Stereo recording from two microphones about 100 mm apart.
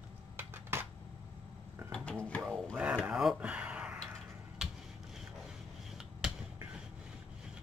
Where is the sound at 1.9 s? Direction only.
10° left (ahead or behind).